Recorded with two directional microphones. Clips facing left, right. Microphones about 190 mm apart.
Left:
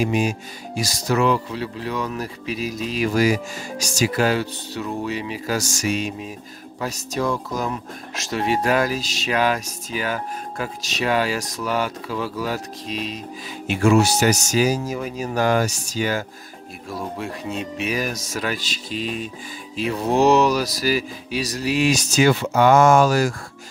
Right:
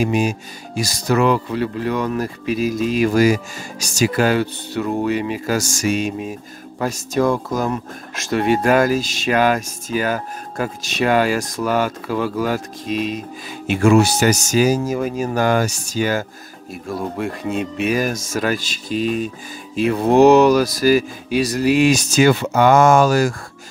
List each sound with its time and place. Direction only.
0.0 s speech: 45° right (ahead or behind)